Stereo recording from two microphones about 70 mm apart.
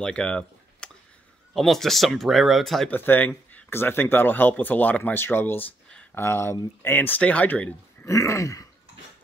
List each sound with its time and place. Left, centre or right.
0.0 s speech: centre
2.9 s speech: left
8.0 s throat clearing: left